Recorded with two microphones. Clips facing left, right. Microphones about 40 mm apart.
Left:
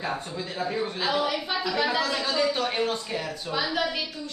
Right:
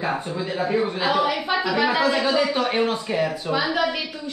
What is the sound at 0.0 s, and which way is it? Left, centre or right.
A man's voice, right.